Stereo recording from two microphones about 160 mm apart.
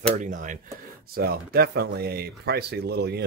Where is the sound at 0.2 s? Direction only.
55° right (ahead or behind).